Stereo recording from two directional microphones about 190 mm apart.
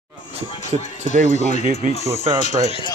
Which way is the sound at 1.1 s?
40° right (ahead or behind).